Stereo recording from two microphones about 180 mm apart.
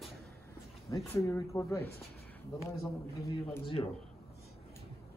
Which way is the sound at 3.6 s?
30° left (ahead or behind).